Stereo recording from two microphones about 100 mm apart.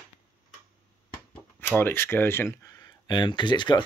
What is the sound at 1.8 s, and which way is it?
Speech, 25° left (ahead or behind).